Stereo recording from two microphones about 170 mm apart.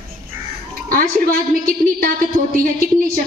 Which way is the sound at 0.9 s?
55° right (ahead or behind).